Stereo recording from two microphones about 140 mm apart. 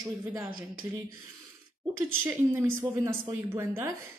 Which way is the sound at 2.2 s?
15° right (ahead or behind).